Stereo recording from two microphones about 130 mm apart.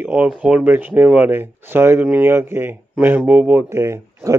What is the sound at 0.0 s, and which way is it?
Speech, 10° right (ahead or behind).